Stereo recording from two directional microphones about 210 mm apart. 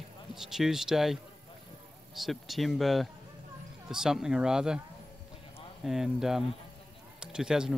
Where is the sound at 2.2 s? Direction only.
Centre (ahead or behind).